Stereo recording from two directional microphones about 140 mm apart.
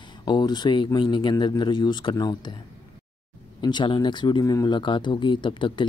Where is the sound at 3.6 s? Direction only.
35° left (ahead or behind).